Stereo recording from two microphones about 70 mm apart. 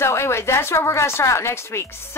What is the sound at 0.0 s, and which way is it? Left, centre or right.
Speech, left.